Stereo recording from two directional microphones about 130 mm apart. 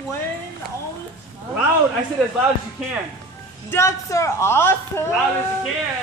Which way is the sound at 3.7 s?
25° left (ahead or behind).